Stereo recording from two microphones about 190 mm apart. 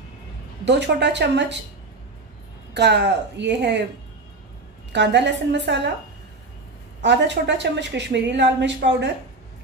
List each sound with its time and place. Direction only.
0.7 s a woman's voice: 65° right (ahead or behind)
2.7 s a woman's voice: 60° right (ahead or behind)
4.9 s a woman's voice: 70° right (ahead or behind)
7.0 s a woman's voice: 70° right (ahead or behind)